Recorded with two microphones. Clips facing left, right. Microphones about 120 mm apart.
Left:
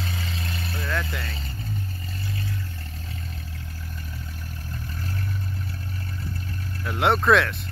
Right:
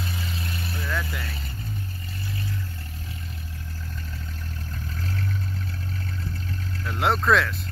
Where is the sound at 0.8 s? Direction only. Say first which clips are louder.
Left 2 dB; 5° right (ahead or behind).